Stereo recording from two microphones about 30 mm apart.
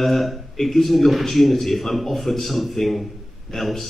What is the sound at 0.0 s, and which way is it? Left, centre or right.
A man's voice, centre.